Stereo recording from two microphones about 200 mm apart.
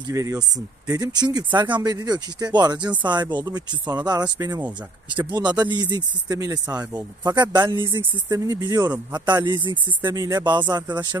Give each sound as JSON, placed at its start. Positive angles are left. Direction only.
{"t": 0.1, "sound": "speech", "side_deg": -15}